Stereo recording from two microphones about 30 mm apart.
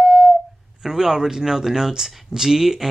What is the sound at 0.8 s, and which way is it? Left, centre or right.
Speech, right.